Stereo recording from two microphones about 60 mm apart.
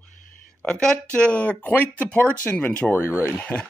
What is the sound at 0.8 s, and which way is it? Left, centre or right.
Speech, centre.